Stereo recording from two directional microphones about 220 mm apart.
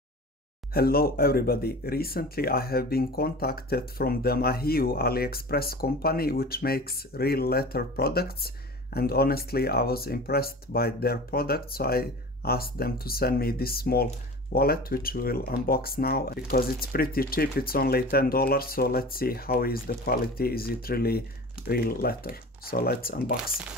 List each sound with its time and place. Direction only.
0.7 s speech: 45° left (ahead or behind)